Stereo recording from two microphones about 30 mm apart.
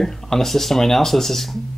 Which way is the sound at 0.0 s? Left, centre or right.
Centre.